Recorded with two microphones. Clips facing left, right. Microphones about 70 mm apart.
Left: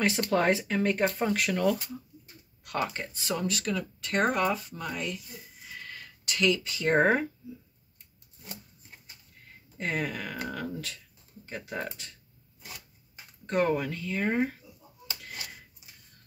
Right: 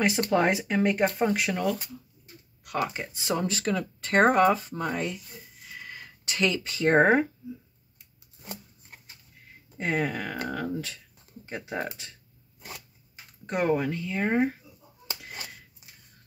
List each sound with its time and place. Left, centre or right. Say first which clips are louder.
0.3 s speech: even; centre
1.6 s speech: left 2 dB; centre; by 3.8 s right
4.0 s speech: right 7 dB; right
5.8 s a sound: right 2 dB; centre
6.3 s speech: even; right
9.8 s speech: right 4 dB; right
13.5 s speech: right 1 dB; centre